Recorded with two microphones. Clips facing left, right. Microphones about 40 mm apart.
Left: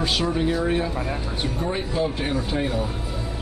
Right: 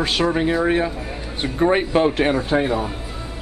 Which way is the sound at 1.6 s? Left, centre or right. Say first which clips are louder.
Right 10 dB; right.